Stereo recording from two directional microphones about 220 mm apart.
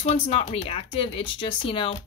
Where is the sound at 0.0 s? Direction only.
30° left (ahead or behind).